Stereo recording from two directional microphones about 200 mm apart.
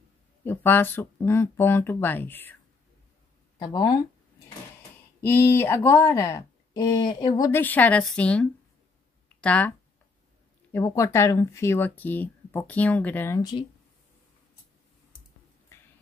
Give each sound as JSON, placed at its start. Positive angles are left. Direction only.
{"t": 0.5, "sound": "speech", "side_deg": 10}
{"t": 3.5, "sound": "speech", "side_deg": 20}
{"t": 5.2, "sound": "speech", "side_deg": 10}